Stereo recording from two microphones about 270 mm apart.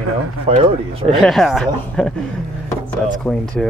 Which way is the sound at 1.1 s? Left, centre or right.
Centre.